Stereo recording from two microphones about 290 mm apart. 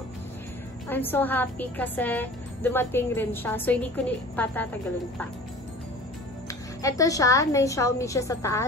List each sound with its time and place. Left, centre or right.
0.8 s a woman's voice: centre
6.8 s a woman's voice: centre